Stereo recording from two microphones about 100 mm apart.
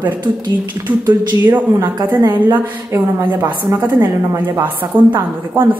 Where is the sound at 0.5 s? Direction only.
20° right (ahead or behind).